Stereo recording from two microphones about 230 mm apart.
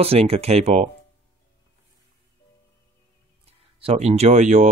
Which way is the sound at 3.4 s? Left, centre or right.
Right.